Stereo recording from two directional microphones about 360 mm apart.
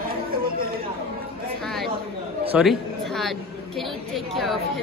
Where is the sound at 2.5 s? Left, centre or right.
Centre.